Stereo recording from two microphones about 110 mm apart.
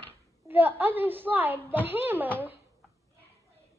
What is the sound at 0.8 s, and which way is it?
A woman's voice, 20° right (ahead or behind).